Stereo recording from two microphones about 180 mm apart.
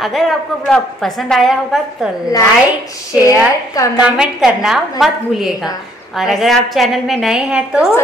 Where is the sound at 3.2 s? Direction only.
20° left (ahead or behind).